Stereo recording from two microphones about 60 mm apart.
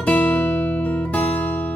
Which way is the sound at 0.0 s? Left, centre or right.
Left.